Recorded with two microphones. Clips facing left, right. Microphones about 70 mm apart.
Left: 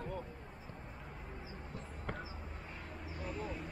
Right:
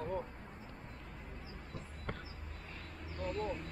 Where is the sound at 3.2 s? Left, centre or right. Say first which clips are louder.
Right 5 dB; centre.